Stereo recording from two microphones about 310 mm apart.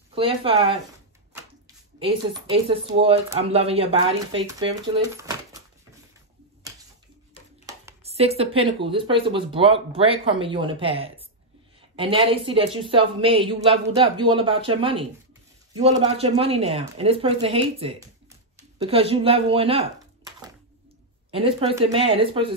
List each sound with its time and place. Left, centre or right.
0.1 s speech: centre
2.0 s speech: centre
5.1 s a sound: centre
7.6 s speech: centre
21.3 s speech: centre